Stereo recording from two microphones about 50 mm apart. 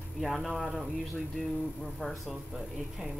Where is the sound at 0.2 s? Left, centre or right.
Centre.